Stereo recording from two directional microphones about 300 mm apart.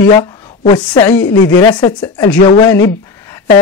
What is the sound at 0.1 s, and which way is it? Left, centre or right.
Speech, centre.